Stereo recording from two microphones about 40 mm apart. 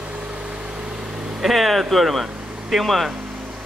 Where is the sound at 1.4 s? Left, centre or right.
Centre.